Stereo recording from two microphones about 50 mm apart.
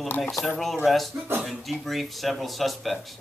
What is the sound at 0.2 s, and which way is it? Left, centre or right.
Speech, centre.